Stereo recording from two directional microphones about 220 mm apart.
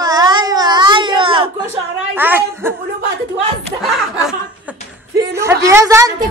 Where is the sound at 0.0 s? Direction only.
20° right (ahead or behind).